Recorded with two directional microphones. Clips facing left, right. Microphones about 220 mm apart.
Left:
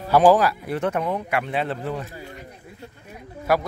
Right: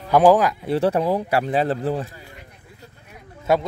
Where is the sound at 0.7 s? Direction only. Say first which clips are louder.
Right 5 dB; 30° right (ahead or behind).